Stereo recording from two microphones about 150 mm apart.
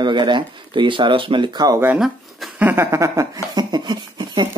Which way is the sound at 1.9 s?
Centre (ahead or behind).